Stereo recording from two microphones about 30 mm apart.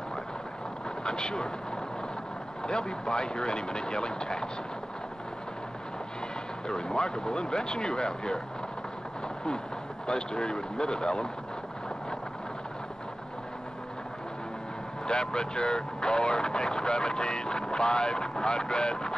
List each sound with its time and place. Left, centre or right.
1.0 s speech: left
2.6 s speech: left
6.7 s speech: left
10.0 s speech: left
15.0 s speech: left